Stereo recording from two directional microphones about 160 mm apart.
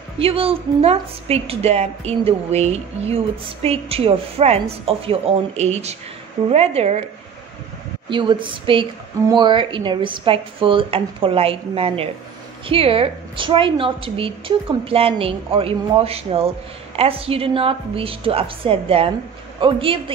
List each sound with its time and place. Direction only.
0.2 s a woman's voice: 35° right (ahead or behind)
8.1 s a woman's voice: 30° right (ahead or behind)